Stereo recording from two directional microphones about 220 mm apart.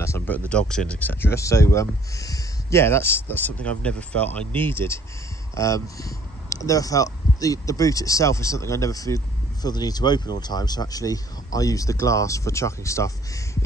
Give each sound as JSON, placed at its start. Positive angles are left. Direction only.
{"t": 0.0, "sound": "speech", "side_deg": 10}